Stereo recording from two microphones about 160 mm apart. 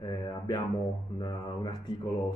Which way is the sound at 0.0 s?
30° left (ahead or behind).